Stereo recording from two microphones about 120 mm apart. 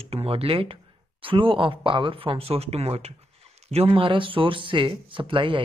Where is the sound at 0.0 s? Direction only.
55° right (ahead or behind).